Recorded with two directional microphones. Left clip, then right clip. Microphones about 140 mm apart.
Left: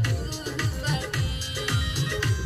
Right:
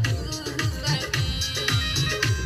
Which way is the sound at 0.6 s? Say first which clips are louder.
Right 3 dB; 20° right (ahead or behind).